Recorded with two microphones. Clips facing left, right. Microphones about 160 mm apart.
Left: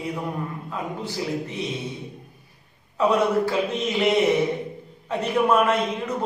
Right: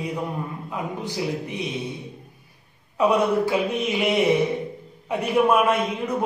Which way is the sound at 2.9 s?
15° right (ahead or behind).